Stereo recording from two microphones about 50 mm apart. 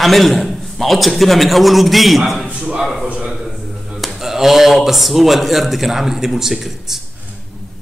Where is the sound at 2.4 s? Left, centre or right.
Centre.